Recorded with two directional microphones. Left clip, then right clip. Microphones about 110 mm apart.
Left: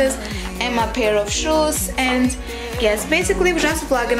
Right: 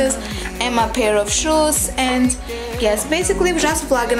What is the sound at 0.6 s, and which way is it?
A woman's voice, 20° right (ahead or behind).